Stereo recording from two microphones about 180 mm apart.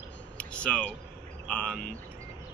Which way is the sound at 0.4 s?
5° left (ahead or behind).